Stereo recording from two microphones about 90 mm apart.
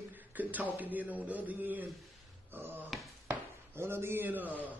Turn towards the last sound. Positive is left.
turn(degrees=-20)  # may be behind; listen again after turning